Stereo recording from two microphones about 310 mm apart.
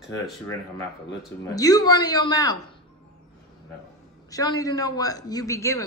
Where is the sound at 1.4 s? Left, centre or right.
Centre.